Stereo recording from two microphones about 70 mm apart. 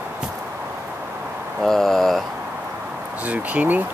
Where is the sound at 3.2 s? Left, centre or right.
Right.